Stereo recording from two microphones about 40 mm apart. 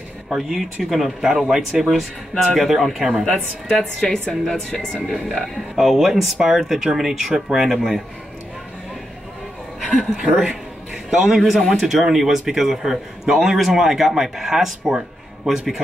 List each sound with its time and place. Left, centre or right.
0.3 s a man's voice: centre
3.7 s a woman's voice: centre
5.8 s a man's voice: centre
10.1 s a man's voice: centre